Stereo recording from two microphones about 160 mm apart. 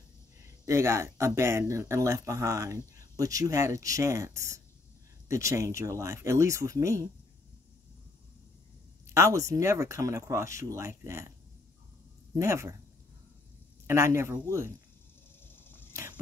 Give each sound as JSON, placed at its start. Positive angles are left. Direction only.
{"t": 0.7, "sound": "speech", "side_deg": -20}
{"t": 9.0, "sound": "speech", "side_deg": -15}
{"t": 12.4, "sound": "speech", "side_deg": -15}
{"t": 13.8, "sound": "speech", "side_deg": -15}
{"t": 15.4, "sound": "arrow", "side_deg": 15}